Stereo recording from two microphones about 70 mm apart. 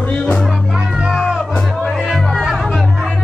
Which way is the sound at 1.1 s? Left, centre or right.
Centre.